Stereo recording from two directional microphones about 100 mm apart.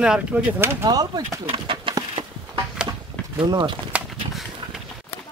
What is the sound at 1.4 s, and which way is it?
Speech, 60° right (ahead or behind).